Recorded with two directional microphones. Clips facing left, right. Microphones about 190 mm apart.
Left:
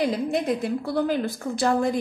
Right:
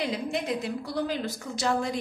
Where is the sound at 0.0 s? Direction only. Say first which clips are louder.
Left 6 dB; 50° left (ahead or behind).